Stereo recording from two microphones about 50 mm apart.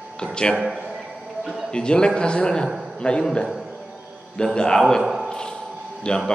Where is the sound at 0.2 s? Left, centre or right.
Centre.